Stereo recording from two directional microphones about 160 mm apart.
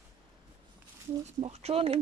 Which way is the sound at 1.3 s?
45° right (ahead or behind).